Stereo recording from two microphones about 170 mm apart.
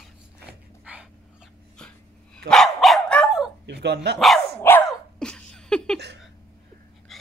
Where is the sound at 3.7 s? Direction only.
80° right.